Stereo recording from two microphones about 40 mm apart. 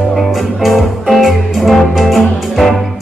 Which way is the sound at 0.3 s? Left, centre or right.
Centre.